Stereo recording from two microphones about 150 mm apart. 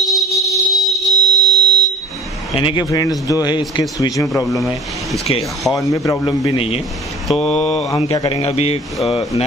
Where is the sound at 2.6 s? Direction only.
35° left (ahead or behind).